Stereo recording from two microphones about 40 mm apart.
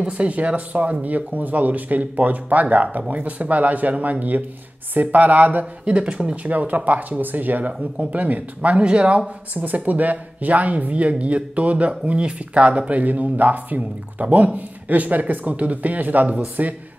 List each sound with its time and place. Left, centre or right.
0.0 s speech: right
5.9 s speech: right
6.3 s speech: right
9.5 s speech: right